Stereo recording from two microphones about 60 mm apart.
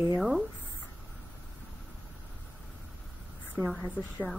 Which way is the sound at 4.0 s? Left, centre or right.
Left.